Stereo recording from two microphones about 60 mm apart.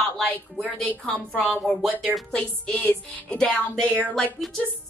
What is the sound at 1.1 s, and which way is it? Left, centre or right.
Speech, left.